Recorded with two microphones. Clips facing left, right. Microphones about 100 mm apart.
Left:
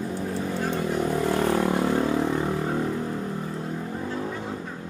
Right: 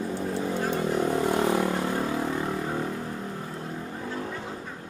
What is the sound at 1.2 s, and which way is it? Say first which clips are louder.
Vehicle: left 1 dB; 15° right (ahead or behind).